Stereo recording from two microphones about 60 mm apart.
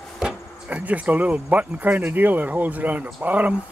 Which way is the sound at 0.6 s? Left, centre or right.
Right.